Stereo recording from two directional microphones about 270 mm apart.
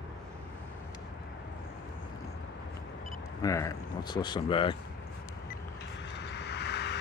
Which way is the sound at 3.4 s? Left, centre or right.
Centre.